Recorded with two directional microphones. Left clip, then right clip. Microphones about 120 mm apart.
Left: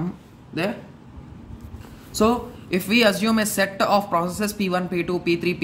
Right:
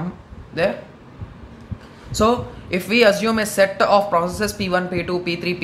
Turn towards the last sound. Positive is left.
turn(degrees=30)  # may be behind; listen again after turning